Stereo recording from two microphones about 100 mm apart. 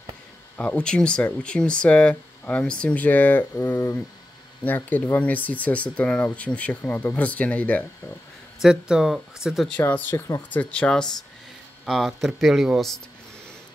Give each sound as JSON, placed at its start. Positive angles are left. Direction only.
{"t": 0.6, "sound": "speech", "side_deg": 15}
{"t": 8.6, "sound": "speech", "side_deg": -5}
{"t": 9.8, "sound": "speech", "side_deg": 15}
{"t": 10.1, "sound": "speech", "side_deg": 30}
{"t": 10.5, "sound": "speech", "side_deg": 15}